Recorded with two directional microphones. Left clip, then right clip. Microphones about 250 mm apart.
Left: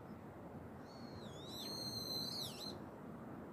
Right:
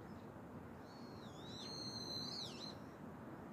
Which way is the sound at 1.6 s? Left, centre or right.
Left.